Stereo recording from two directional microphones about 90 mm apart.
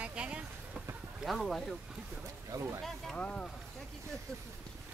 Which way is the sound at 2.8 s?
10° left (ahead or behind).